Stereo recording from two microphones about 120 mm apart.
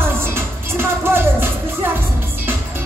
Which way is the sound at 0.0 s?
20° right (ahead or behind).